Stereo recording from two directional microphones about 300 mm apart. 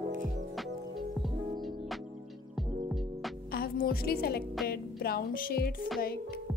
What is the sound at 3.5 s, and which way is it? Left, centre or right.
A woman's voice, left.